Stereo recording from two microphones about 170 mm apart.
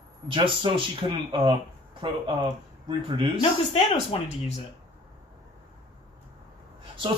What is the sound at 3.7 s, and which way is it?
Speech, 35° left (ahead or behind).